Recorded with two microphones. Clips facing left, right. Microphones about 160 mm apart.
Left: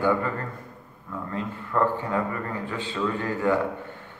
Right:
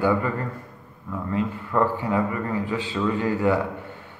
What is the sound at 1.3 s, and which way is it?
Speech, 15° right (ahead or behind).